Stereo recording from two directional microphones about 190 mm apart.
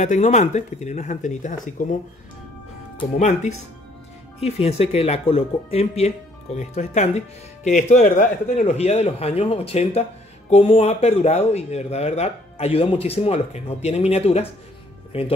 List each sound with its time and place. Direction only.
0.0 s speech: 40° left (ahead or behind)
3.2 s speech: 40° left (ahead or behind)